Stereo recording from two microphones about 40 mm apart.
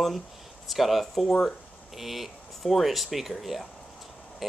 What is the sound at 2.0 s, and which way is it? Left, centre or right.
Speech, centre.